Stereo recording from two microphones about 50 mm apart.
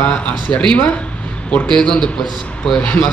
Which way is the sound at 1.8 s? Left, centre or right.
Centre.